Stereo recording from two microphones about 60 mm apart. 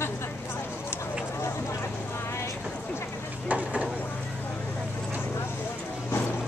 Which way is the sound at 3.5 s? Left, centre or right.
Right.